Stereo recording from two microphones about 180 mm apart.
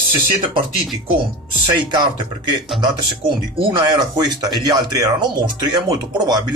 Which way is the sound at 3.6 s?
20° right (ahead or behind).